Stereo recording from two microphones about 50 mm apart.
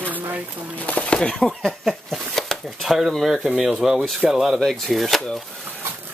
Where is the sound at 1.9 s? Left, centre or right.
Centre.